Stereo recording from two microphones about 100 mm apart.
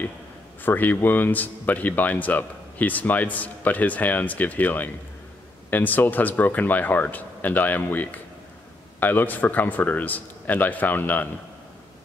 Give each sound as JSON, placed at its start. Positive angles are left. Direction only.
{"t": 0.6, "sound": "speech", "side_deg": 20}